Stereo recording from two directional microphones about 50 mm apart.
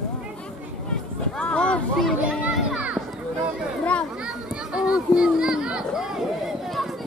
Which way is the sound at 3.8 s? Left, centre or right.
Left.